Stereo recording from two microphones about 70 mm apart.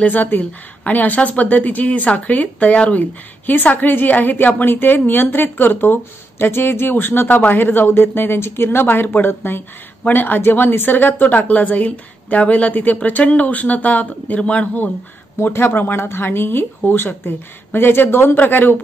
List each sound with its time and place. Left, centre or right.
0.0 s a woman's voice: left
15.3 s speech: left